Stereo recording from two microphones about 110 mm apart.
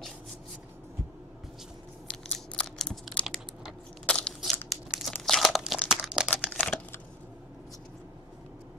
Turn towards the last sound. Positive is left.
turn(degrees=10)  # may be behind; listen again after turning